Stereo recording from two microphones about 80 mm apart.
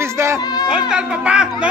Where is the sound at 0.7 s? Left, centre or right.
Centre.